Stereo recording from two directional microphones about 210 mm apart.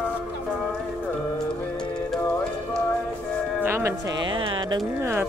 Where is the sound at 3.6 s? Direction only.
10° right (ahead or behind).